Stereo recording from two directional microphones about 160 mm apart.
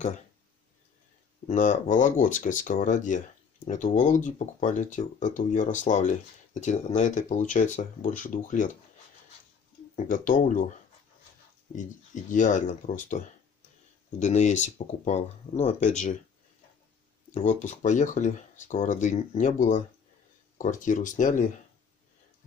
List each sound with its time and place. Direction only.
1.5 s speech: 50° left (ahead or behind)
9.9 s speech: 55° left (ahead or behind)
11.7 s speech: 50° left (ahead or behind)
14.2 s speech: 45° left (ahead or behind)
17.3 s speech: 50° left (ahead or behind)